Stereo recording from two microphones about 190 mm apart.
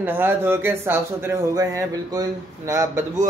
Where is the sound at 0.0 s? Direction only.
10° right (ahead or behind).